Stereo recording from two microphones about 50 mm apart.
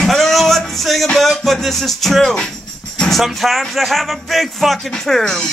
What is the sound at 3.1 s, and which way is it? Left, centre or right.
Speech, centre.